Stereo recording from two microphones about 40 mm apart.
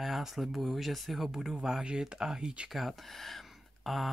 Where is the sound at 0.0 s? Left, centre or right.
Centre.